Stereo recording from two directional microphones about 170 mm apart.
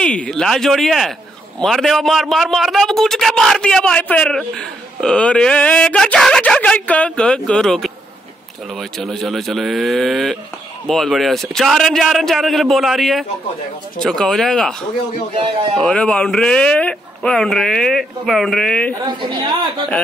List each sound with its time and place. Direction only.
0.0 s a man's voice: 5° left (ahead or behind)
19.0 s a woman's voice: 30° right (ahead or behind)